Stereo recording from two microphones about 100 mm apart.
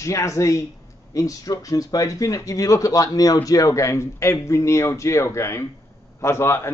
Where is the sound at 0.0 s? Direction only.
30° left (ahead or behind).